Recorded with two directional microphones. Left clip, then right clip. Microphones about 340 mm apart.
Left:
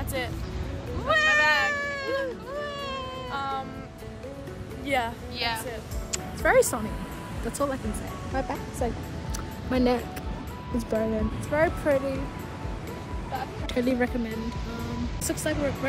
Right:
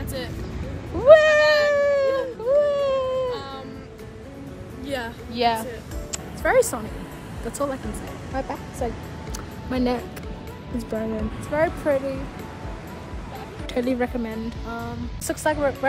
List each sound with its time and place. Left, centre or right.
1.0 s cat: centre
4.8 s a sound: centre
6.1 s music: centre
7.5 s speech: centre
13.7 s a woman's voice: centre
15.6 s a woman's voice: centre